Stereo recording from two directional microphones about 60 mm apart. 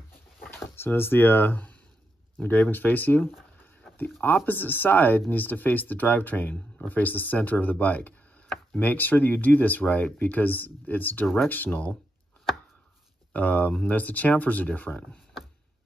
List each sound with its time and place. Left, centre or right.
0.5 s speech: left
13.3 s speech: left